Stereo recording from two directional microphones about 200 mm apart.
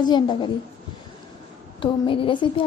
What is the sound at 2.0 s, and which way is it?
Speech, 25° left (ahead or behind).